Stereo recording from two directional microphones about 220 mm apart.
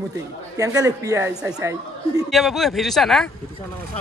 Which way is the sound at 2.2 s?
Centre (ahead or behind).